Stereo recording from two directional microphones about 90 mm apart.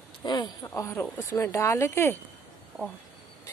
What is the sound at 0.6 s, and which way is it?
Speech, 35° left (ahead or behind).